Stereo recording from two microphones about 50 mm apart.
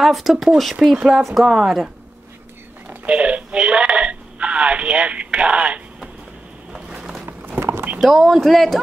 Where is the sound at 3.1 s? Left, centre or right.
Right.